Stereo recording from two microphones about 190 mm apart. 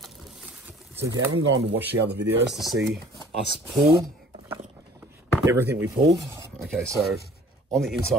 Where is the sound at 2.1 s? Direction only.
65° right (ahead or behind).